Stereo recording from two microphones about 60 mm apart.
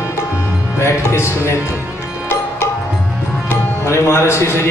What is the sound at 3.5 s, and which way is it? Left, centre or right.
Speech, left.